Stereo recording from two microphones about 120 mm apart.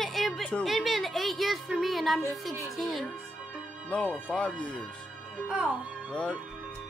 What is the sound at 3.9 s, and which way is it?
Speech, 10° left (ahead or behind).